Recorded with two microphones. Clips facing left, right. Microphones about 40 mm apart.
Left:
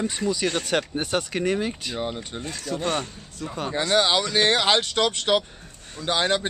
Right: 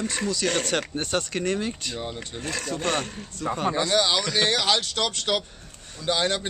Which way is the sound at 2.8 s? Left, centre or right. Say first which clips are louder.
Left 1 dB; right.